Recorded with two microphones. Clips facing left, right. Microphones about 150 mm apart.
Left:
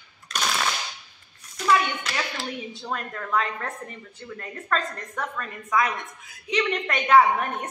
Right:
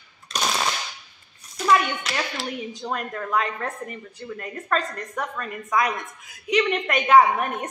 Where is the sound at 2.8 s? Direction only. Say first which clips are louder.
Right 3 dB; 15° right (ahead or behind).